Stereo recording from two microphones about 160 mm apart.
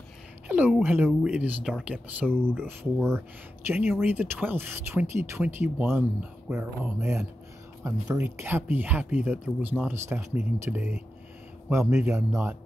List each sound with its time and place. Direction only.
0.5 s speech: 10° right (ahead or behind)